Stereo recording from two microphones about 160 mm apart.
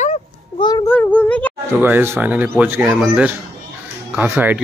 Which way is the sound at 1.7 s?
10° right (ahead or behind).